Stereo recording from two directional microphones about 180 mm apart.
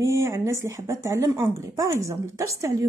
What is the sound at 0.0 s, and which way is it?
A woman's voice, 15° right (ahead or behind).